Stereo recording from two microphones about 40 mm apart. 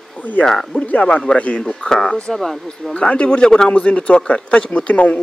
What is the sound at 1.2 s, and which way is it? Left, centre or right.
Speech, left.